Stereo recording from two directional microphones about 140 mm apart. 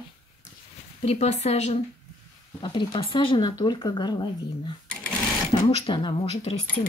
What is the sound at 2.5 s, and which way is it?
Speech, 35° left (ahead or behind).